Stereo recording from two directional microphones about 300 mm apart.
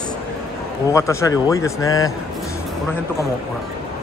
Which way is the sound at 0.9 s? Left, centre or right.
Centre.